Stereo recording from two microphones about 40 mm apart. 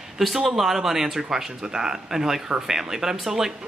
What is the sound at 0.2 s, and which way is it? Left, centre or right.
Speech, centre.